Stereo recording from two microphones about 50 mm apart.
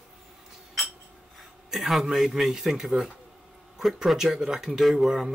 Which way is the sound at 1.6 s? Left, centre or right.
Centre.